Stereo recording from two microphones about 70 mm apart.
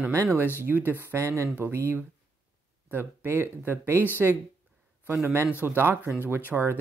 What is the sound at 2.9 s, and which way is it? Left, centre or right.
Speech, right.